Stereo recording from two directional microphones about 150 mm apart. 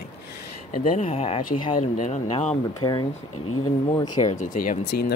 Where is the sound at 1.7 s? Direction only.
55° left (ahead or behind).